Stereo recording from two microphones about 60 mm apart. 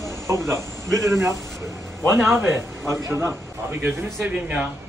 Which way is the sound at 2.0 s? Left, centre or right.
Centre.